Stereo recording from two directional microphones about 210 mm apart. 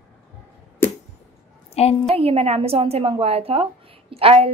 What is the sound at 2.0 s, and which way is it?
A woman's voice, 30° right (ahead or behind).